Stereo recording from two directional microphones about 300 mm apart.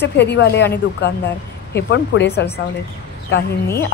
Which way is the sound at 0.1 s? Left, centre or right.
Left.